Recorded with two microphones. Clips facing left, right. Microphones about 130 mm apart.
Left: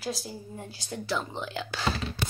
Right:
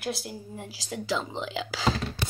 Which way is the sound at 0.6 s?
90° right.